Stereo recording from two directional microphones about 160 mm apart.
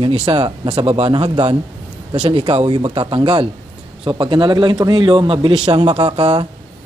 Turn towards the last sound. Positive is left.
turn(degrees=-35)  # may be behind; listen again after turning